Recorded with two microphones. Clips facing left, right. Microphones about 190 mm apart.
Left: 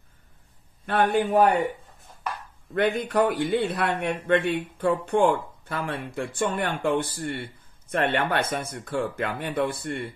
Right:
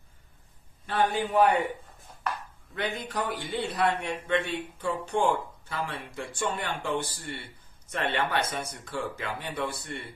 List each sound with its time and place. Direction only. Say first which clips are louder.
0.8 s a man's voice: left 5 dB; 60° left (ahead or behind); by 1.7 s 45° left (ahead or behind)
2.7 s a man's voice: left 9 dB; 55° left (ahead or behind)